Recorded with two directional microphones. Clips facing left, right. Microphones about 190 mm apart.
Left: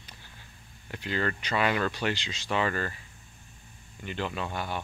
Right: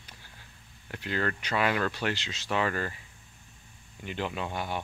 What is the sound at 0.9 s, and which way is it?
Speech, centre (ahead or behind).